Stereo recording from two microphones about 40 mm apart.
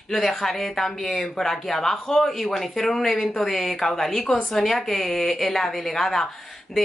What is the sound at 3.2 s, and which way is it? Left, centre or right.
Speech, left.